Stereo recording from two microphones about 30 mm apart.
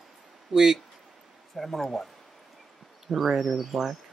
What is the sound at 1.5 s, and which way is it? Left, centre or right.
Speech, centre.